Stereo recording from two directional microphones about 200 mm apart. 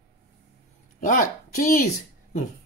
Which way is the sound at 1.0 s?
40° left (ahead or behind).